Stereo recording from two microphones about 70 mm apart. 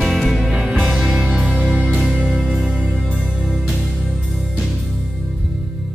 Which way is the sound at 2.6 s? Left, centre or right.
Centre.